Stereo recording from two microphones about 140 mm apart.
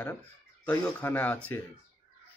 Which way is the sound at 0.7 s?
10° left (ahead or behind).